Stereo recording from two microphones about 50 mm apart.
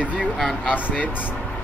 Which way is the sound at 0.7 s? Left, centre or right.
Left.